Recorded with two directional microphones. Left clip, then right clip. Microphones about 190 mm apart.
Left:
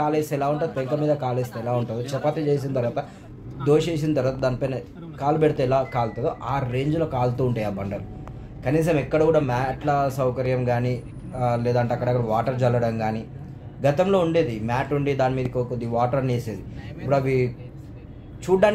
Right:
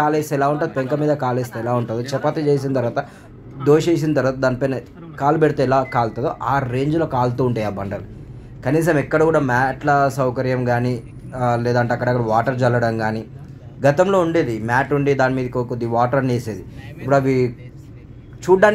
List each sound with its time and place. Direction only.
0.0 s a woman's voice: 20° right (ahead or behind)